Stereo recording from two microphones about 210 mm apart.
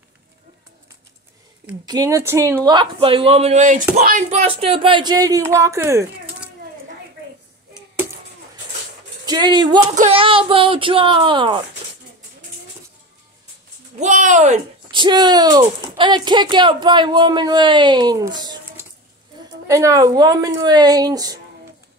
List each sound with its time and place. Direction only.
1.9 s speech: 15° right (ahead or behind)
9.2 s speech: 20° right (ahead or behind)
13.9 s speech: 35° right (ahead or behind); by 18.6 s 20° right (ahead or behind)
19.7 s a woman's voice: 15° right (ahead or behind)